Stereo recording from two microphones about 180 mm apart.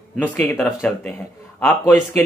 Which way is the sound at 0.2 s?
10° left (ahead or behind).